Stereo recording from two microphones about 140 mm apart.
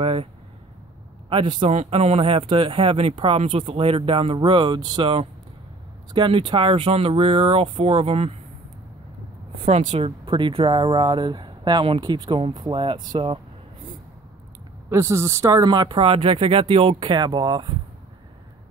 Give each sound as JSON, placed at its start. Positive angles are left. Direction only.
{"t": 0.0, "sound": "a sound", "side_deg": -40}
{"t": 1.3, "sound": "speech", "side_deg": -35}
{"t": 1.7, "sound": "speech", "side_deg": -50}
{"t": 9.7, "sound": "speech", "side_deg": -50}
{"t": 14.9, "sound": "speech", "side_deg": -20}